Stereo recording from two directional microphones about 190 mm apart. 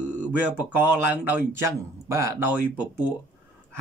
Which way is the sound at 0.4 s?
10° right (ahead or behind).